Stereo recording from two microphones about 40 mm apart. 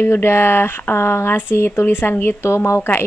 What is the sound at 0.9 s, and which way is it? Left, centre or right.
Speech, left.